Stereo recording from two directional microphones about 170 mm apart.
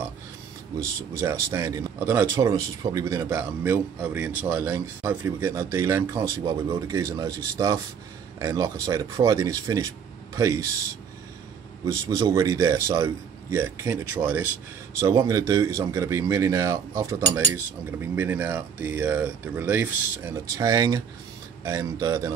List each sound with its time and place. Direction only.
1.1 s speech: 20° right (ahead or behind)
11.8 s speech: 20° right (ahead or behind)